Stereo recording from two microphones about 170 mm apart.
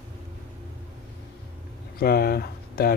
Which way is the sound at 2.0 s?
65° left (ahead or behind).